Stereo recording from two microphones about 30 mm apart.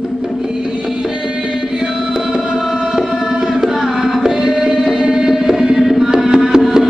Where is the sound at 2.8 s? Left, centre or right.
Centre.